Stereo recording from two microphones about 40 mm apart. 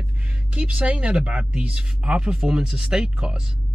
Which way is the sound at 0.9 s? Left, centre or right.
Right.